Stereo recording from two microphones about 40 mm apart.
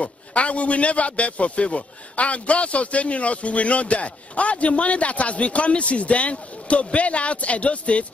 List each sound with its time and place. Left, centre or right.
0.0 s a man's voice: left